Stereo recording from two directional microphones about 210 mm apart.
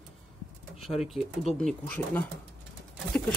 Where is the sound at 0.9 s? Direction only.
15° left (ahead or behind).